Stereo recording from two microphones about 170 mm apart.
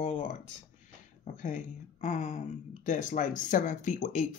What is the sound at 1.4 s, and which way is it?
Speech, 45° left (ahead or behind).